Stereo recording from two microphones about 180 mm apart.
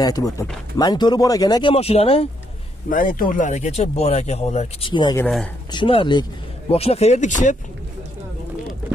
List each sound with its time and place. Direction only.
0.0 s speech: 20° left (ahead or behind)
2.9 s speech: 50° left (ahead or behind)
4.9 s speech: 25° left (ahead or behind)
5.2 s speech: 5° left (ahead or behind)
5.7 s speech: 30° left (ahead or behind); by 7.5 s 45° left (ahead or behind)